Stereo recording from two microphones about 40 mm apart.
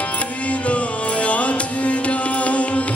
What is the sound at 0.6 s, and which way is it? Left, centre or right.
Music, left.